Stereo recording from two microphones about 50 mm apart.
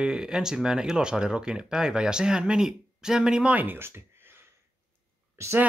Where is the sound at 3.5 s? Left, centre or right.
Right.